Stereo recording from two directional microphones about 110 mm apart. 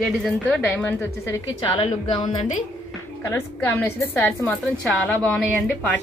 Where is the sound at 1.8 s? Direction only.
50° left (ahead or behind).